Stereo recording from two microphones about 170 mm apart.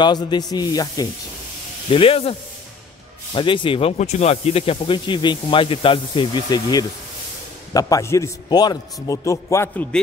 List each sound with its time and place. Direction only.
0.0 s speech: 25° left (ahead or behind)
1.9 s speech: 30° left (ahead or behind)
3.3 s speech: 30° left (ahead or behind)